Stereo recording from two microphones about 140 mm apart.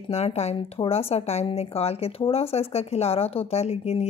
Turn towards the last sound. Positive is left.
turn(degrees=50)  # may be behind; listen again after turning